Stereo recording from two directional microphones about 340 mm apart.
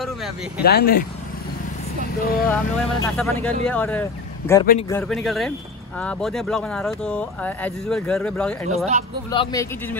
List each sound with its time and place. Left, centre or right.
0.6 s speech: left
2.1 s speech: left
2.8 s speech: centre
8.6 s speech: centre
9.3 s speech: centre